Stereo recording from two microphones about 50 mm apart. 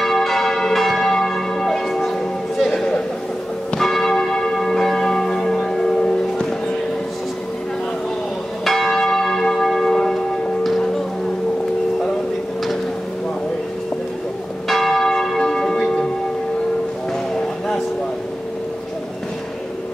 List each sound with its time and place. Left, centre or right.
0.0 s church bell: centre
2.7 s a sound: centre
3.7 s church bell: centre
8.6 s church bell: centre
14.7 s church bell: centre